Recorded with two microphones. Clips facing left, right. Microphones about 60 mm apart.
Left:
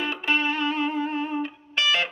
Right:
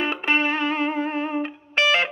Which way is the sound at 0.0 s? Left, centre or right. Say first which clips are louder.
Right 3 dB; right.